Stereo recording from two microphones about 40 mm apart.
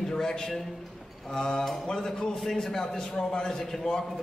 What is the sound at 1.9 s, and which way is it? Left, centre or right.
Speech, centre.